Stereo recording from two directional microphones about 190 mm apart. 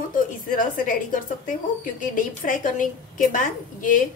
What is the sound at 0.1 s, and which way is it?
A woman's voice, 45° left (ahead or behind).